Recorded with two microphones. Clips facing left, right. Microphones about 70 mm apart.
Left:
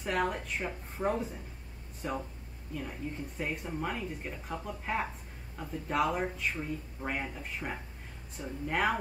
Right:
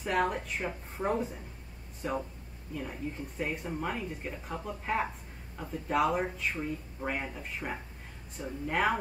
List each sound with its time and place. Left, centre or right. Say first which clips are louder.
0.0 s speech: right 2 dB; centre